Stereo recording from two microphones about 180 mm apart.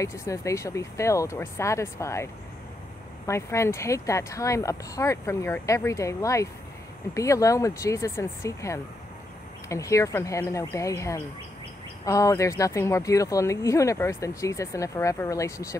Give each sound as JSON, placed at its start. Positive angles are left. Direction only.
{"t": 0.0, "sound": "speech", "side_deg": 15}
{"t": 3.3, "sound": "speech", "side_deg": 15}